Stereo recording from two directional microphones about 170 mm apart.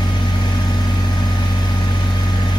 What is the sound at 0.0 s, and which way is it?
Vehicle, 25° left (ahead or behind).